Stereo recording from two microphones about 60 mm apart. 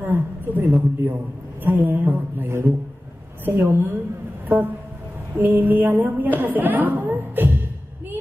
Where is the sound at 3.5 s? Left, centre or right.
Right.